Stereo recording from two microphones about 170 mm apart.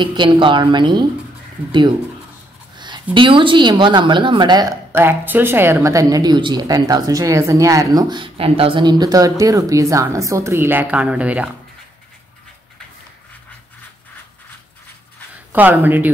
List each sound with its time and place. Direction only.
0.0 s speech: 25° right (ahead or behind)
3.2 s speech: 30° right (ahead or behind); by 11.5 s 10° right (ahead or behind)
15.5 s speech: 10° right (ahead or behind)